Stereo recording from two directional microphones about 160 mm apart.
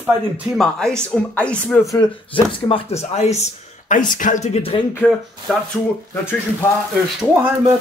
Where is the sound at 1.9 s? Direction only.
35° left (ahead or behind).